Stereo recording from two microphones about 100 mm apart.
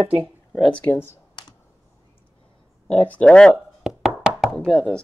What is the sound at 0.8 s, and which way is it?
Computer keyboard, 15° left (ahead or behind).